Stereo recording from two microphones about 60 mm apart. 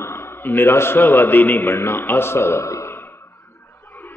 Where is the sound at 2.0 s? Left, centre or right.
Left.